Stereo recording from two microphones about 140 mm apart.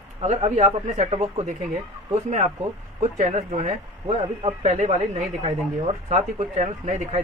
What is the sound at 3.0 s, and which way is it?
Speech, 65° right (ahead or behind).